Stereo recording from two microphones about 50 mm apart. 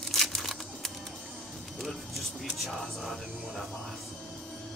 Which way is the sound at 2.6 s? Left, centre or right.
Centre.